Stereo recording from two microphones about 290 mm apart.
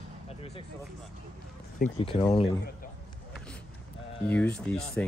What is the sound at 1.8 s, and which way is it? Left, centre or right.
Speech, centre.